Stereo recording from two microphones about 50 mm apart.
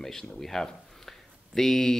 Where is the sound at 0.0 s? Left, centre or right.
Centre.